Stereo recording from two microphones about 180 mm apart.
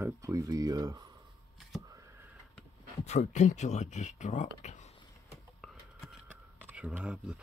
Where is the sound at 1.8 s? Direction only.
15° right (ahead or behind).